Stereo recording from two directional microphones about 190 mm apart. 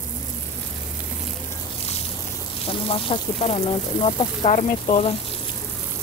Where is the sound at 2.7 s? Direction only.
30° left (ahead or behind).